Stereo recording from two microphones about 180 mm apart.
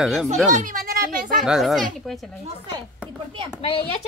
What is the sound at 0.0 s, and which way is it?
Speech, centre (ahead or behind).